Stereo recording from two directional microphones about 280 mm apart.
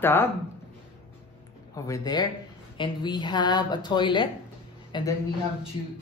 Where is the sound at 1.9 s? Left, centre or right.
Centre.